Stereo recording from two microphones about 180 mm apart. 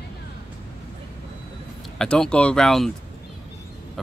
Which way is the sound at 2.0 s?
5° left (ahead or behind).